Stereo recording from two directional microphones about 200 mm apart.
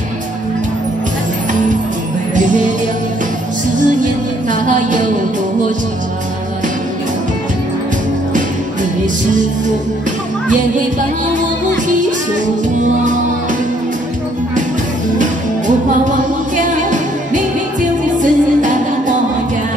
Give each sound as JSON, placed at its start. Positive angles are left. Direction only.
{"t": 2.3, "sound": "music", "side_deg": -40}
{"t": 3.7, "sound": "music", "side_deg": -40}
{"t": 11.3, "sound": "music", "side_deg": -40}
{"t": 15.1, "sound": "music", "side_deg": -40}